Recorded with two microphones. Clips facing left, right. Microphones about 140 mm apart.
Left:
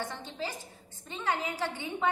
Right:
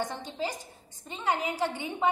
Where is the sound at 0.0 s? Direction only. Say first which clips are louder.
Right 4 dB; 15° right (ahead or behind).